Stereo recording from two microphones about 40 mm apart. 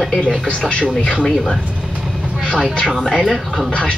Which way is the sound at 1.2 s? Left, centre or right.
Centre.